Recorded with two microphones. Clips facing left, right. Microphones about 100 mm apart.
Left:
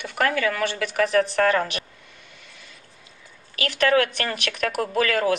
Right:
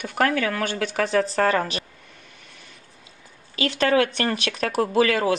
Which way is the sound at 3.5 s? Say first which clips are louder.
Even; 25° right (ahead or behind).